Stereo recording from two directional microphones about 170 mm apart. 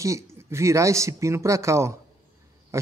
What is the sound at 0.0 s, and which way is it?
Speech, 15° right (ahead or behind).